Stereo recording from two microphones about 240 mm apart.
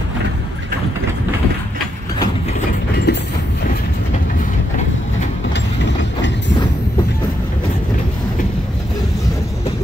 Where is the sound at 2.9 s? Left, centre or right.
Left.